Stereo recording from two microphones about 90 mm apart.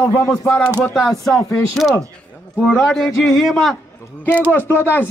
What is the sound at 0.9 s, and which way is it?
Speech, centre (ahead or behind).